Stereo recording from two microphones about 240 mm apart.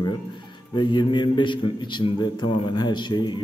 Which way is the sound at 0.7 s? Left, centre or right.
Centre.